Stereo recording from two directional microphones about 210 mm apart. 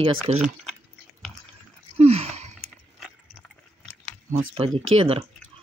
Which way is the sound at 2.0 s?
30° right (ahead or behind).